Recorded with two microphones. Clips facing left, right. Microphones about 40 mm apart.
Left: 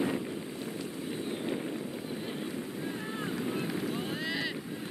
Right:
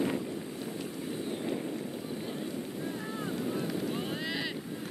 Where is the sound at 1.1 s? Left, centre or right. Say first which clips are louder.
Even; centre.